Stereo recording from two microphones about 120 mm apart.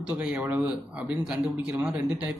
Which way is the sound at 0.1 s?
10° right (ahead or behind).